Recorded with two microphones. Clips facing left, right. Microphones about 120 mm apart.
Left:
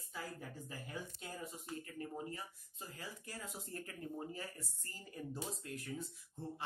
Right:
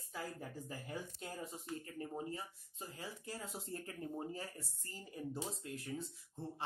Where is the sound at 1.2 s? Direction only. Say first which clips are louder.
Right 2 dB; 40° right (ahead or behind).